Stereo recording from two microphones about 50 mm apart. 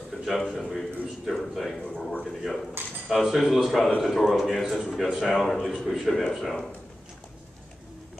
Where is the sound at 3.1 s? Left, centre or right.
Centre.